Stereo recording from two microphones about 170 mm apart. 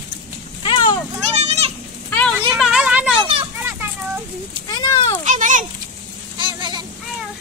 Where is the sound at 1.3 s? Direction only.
40° right (ahead or behind).